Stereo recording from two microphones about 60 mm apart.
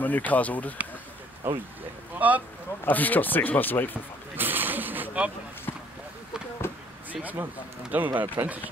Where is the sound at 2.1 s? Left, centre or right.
Right.